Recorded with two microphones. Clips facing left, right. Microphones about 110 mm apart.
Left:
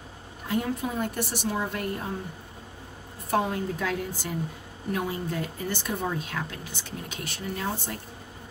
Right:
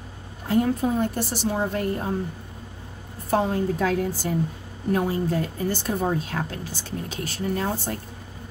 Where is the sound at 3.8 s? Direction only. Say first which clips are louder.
Right 6 dB; 35° right (ahead or behind).